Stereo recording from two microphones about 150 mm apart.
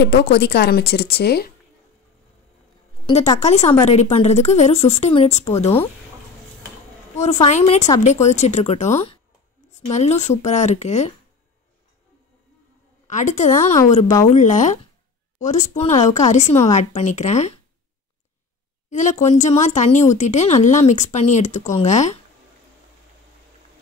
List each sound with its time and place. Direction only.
0.1 s a woman's voice: 90° left
3.3 s speech: 45° left (ahead or behind)
7.2 s speech: 50° left (ahead or behind)
13.0 s a woman's voice: 55° left (ahead or behind)
18.9 s speech: 55° left (ahead or behind)